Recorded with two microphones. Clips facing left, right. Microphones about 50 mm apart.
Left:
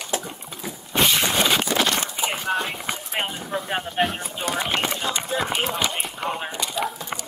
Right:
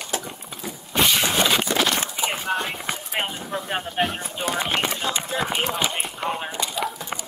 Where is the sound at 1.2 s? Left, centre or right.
Centre.